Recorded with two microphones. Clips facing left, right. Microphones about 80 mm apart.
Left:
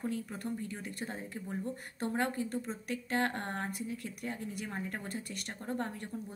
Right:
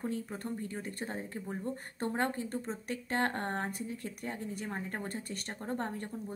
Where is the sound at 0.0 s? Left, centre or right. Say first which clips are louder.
Even; right.